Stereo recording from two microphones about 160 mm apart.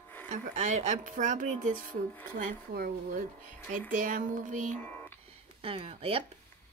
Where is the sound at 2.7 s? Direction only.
65° right (ahead or behind).